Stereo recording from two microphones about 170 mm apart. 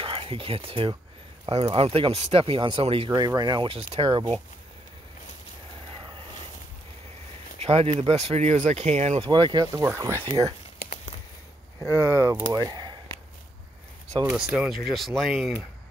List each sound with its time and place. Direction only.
0.0 s speech: 30° right (ahead or behind)
3.1 s speech: 20° right (ahead or behind)
7.5 s speech: 35° right (ahead or behind)
9.3 s speech: 25° right (ahead or behind)
11.9 s speech: 20° right (ahead or behind)
14.5 s speech: centre (ahead or behind)